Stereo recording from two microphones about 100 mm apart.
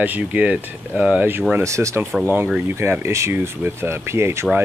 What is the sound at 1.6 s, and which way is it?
Speech, 30° right (ahead or behind).